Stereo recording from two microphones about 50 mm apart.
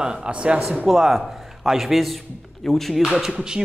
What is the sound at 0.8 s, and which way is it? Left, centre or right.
A man's voice, centre.